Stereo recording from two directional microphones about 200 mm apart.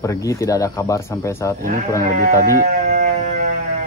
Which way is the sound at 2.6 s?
40° right (ahead or behind).